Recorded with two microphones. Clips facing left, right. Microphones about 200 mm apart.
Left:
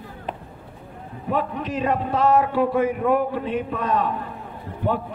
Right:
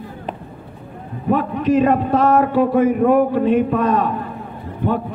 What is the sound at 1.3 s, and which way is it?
A man's voice, 50° right (ahead or behind).